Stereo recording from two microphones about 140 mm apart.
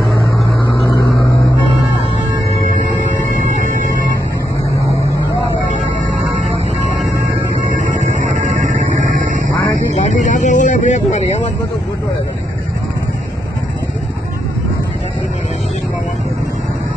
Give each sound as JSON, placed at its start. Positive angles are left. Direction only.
{"t": 0.9, "sound": "vehicle", "side_deg": 25}
{"t": 6.3, "sound": "music", "side_deg": -55}
{"t": 7.7, "sound": "music", "side_deg": -55}
{"t": 9.8, "sound": "a sound", "side_deg": 60}